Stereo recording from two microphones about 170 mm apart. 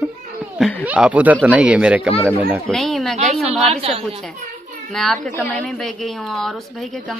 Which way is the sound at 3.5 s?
35° right (ahead or behind).